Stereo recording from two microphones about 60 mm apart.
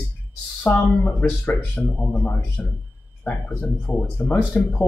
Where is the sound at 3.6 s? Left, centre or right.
Left.